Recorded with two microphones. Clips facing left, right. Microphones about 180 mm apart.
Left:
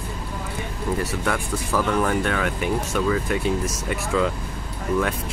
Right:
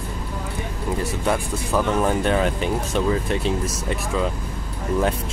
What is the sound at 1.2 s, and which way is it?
Speech, 20° right (ahead or behind).